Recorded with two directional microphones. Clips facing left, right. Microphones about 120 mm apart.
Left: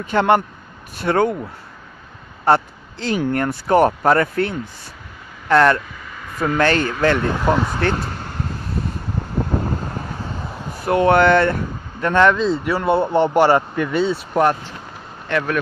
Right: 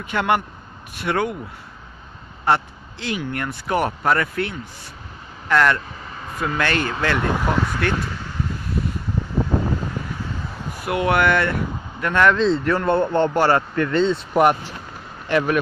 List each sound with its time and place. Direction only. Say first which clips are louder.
0.0 s speech: left 5 dB; 35° left (ahead or behind)
2.4 s speech: left 4 dB; 35° left (ahead or behind)
6.0 s a sound: right 1 dB; 35° right (ahead or behind)
6.4 s speech: left 5 dB; 35° left (ahead or behind)
8.1 s vehicle: left 1 dB; 50° left (ahead or behind)
10.8 s speech: left 5 dB; 35° left (ahead or behind)
12.4 s a man's voice: right 1 dB; 5° left (ahead or behind)
14.3 s speech: right 1 dB; 10° right (ahead or behind)